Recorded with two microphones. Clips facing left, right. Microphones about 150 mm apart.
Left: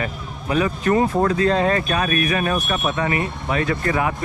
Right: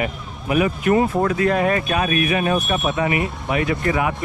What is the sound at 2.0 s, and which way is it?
Speech, 25° right (ahead or behind).